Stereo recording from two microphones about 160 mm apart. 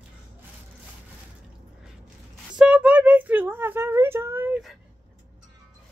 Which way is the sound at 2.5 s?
5° right (ahead or behind).